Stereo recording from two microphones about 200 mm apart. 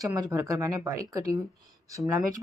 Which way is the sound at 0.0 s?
20° right (ahead or behind).